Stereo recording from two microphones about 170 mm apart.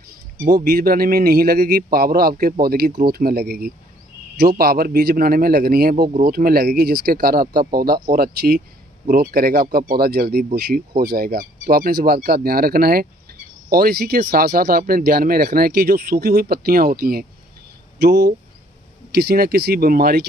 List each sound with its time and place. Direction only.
0.6 s speech: 60° right (ahead or behind)
18.0 s speech: 70° right (ahead or behind)